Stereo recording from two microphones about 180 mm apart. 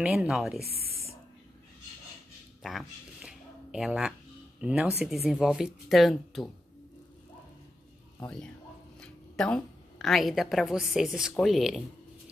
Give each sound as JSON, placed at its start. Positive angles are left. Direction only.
{"t": 0.0, "sound": "speech", "side_deg": -5}
{"t": 3.2, "sound": "a sound", "side_deg": -5}
{"t": 4.6, "sound": "speech", "side_deg": -5}
{"t": 9.0, "sound": "a woman's voice", "side_deg": 5}